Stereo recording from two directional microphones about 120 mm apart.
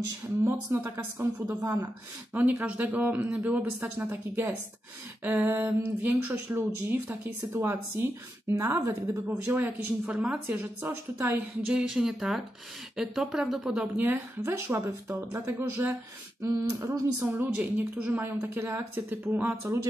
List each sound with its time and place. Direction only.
0.4 s speech: 20° right (ahead or behind)
2.3 s speech: 15° right (ahead or behind)
11.6 s speech: 5° right (ahead or behind)
14.0 s speech: 20° right (ahead or behind)
17.3 s speech: 15° right (ahead or behind)